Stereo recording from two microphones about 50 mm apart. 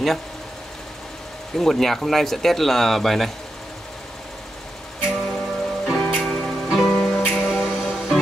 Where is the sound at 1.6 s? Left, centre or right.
Centre.